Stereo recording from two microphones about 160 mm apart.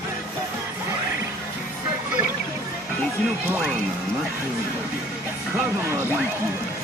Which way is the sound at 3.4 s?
10° right (ahead or behind).